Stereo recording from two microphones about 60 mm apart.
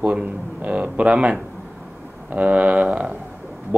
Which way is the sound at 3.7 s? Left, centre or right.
Right.